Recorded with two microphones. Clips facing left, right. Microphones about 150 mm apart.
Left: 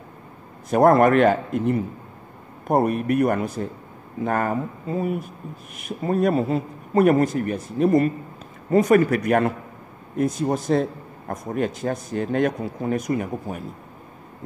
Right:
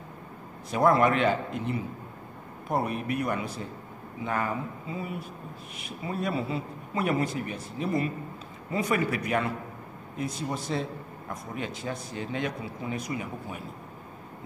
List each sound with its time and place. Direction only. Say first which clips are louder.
0.7 s a man's voice: left 7 dB; 50° left (ahead or behind)